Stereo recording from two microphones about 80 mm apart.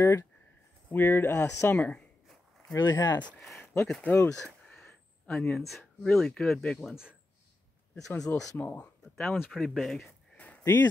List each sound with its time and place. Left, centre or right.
0.0 s speech: left
1.7 s speech: centre
2.7 s speech: left
3.3 s speech: centre
3.8 s speech: centre
4.3 s a sound: centre
5.3 s speech: centre
6.9 s speech: centre
8.5 s speech: left
9.0 s speech: centre
10.3 s a sound: centre
10.6 s speech: left